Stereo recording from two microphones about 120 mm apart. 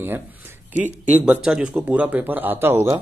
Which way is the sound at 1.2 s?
5° right (ahead or behind).